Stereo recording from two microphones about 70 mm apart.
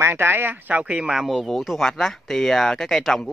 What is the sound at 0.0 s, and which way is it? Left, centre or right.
Speech, right.